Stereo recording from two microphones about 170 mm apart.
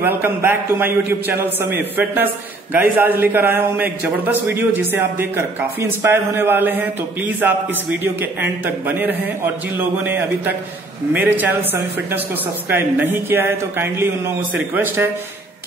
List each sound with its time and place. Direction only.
0.0 s a man's voice: 10° right (ahead or behind)